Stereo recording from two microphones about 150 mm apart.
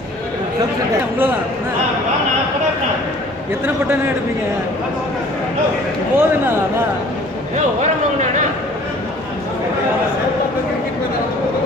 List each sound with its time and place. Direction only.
6.1 s a man's voice: 15° right (ahead or behind)
7.5 s speech: 50° right (ahead or behind)